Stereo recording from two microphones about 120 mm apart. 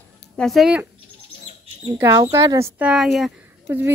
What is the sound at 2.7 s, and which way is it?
Speech, 5° right (ahead or behind).